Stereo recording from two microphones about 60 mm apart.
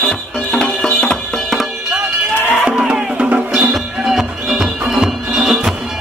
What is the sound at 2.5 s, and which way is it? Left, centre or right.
Music, centre.